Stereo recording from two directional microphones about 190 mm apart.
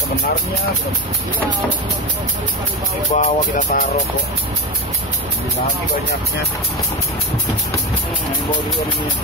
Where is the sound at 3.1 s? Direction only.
45° left (ahead or behind).